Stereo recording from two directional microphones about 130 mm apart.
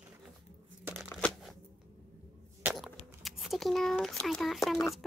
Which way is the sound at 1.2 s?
10° left (ahead or behind).